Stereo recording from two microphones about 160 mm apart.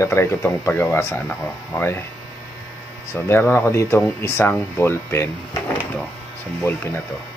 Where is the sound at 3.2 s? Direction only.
15° left (ahead or behind).